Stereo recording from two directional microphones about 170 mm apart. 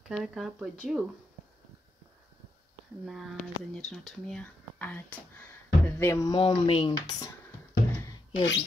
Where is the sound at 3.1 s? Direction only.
Centre (ahead or behind).